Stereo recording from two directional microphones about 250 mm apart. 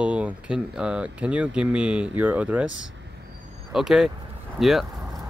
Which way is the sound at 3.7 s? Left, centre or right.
Centre.